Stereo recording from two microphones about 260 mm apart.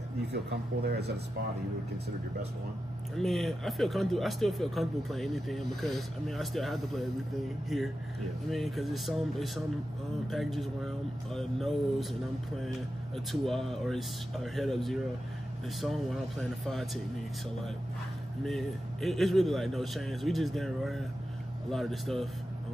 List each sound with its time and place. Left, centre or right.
0.3 s speech: right
3.2 s speech: centre
18.4 s speech: centre